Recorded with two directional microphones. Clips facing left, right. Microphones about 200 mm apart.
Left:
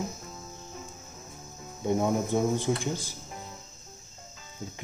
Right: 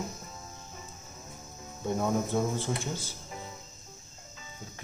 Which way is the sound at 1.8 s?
15° left (ahead or behind).